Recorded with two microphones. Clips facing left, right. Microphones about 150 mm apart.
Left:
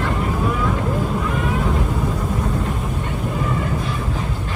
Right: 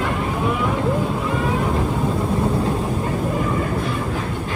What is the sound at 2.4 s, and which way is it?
Vehicle, 35° right (ahead or behind).